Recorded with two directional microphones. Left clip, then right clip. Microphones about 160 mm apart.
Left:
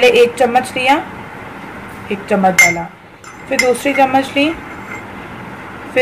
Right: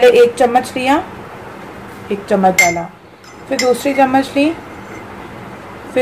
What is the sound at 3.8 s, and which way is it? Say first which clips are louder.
Speech: even; 5° right (ahead or behind).